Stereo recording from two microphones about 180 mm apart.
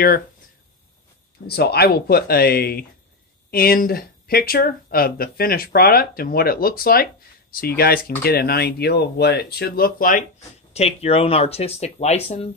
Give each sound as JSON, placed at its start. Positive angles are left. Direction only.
{"t": 1.5, "sound": "speech", "side_deg": 60}
{"t": 10.7, "sound": "speech", "side_deg": 35}